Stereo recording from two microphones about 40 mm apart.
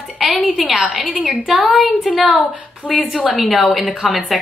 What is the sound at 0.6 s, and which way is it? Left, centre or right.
Speech, right.